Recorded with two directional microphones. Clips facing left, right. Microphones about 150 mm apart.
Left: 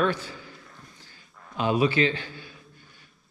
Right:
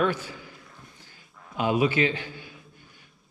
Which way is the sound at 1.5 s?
15° right (ahead or behind).